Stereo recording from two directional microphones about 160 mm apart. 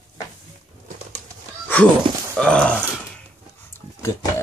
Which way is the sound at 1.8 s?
5° left (ahead or behind).